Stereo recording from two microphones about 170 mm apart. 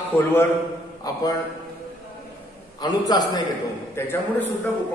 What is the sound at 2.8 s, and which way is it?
Speech, 25° left (ahead or behind).